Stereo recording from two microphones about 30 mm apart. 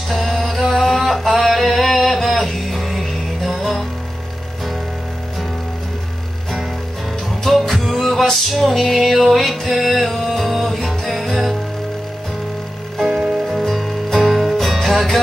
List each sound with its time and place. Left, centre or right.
0.1 s a sound: centre
7.4 s music: centre
13.1 s music: centre
13.5 s music: centre